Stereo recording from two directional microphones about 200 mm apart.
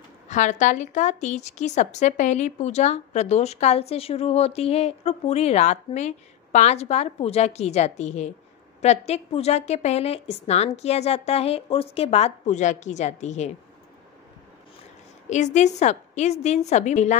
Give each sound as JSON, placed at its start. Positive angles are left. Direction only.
{"t": 0.3, "sound": "a woman's voice", "side_deg": 35}
{"t": 15.2, "sound": "a woman's voice", "side_deg": 35}